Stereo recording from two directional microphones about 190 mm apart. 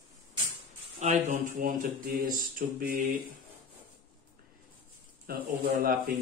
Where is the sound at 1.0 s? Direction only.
40° right (ahead or behind).